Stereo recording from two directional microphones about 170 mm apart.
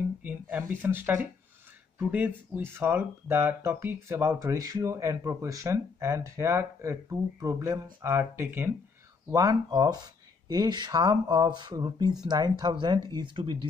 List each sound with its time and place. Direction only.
0.2 s speech: 10° right (ahead or behind); by 13.7 s 30° right (ahead or behind)